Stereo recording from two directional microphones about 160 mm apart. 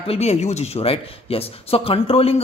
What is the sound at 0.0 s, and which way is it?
Speech, 40° left (ahead or behind).